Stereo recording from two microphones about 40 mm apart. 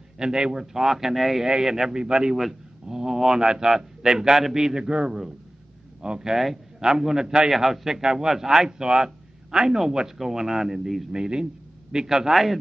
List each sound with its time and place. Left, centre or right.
0.2 s a man's voice: centre
6.3 s a man's voice: centre